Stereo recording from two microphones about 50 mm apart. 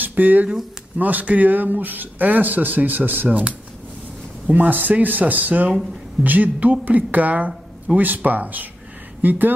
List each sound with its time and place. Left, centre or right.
0.0 s speech: right
4.5 s speech: right